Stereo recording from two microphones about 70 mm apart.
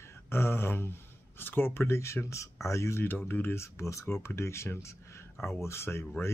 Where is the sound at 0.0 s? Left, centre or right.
Left.